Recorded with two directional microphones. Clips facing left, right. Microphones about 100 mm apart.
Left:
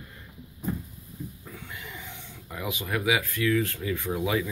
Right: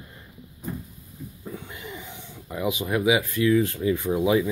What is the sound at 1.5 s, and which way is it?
Throat clearing, 25° right (ahead or behind).